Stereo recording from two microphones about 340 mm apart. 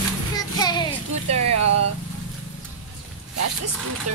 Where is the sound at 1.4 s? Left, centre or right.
Right.